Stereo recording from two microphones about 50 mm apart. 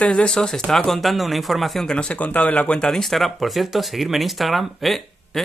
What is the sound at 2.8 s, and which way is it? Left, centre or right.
Speech, centre.